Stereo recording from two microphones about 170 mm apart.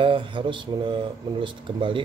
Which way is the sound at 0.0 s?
30° right (ahead or behind).